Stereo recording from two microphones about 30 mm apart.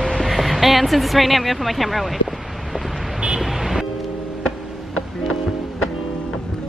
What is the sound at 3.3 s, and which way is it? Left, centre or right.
Vehicle, centre.